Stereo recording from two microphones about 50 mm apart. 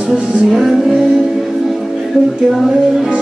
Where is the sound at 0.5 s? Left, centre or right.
Centre.